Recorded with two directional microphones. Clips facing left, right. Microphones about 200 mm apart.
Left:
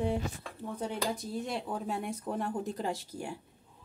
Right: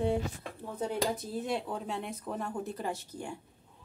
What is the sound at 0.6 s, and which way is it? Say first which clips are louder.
Speech: right 2 dB; 5° right (ahead or behind).